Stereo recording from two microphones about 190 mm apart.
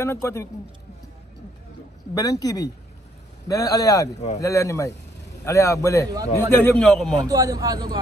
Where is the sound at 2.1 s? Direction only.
20° left (ahead or behind).